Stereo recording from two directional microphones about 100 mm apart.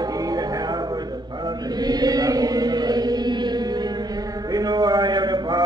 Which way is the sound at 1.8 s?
40° right (ahead or behind).